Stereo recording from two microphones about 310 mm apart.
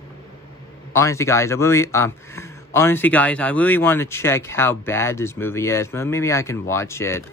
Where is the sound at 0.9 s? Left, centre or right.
Centre.